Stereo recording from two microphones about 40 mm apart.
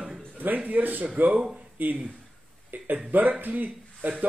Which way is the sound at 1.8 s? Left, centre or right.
Right.